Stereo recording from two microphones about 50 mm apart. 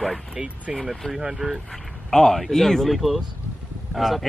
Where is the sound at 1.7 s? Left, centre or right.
Centre.